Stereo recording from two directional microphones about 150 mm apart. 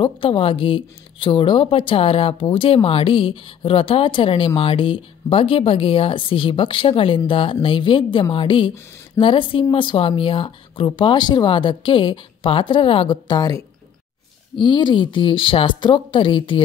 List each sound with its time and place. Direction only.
0.0 s speech: 35° left (ahead or behind)